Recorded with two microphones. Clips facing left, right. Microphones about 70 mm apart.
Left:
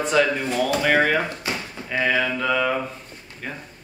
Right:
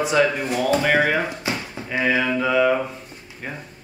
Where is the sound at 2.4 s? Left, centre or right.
Centre.